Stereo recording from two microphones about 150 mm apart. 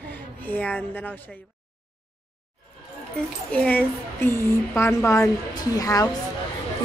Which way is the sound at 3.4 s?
10° left (ahead or behind).